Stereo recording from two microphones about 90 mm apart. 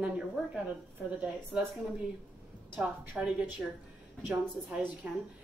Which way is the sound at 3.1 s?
5° right (ahead or behind).